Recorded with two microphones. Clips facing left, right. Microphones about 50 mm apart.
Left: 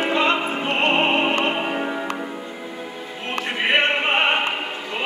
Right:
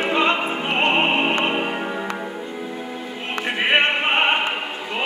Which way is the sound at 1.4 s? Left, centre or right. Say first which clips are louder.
Even; centre.